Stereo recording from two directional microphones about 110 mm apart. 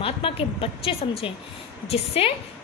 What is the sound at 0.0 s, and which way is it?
A woman's voice, 55° left (ahead or behind).